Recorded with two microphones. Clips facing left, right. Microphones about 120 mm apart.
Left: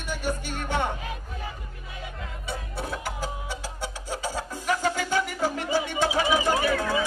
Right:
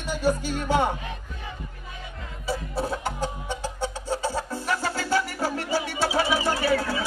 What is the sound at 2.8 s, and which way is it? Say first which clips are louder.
Music: right 4 dB; 30° right (ahead or behind).